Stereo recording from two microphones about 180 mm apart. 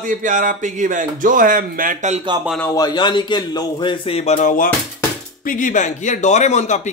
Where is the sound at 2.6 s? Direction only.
20° left (ahead or behind).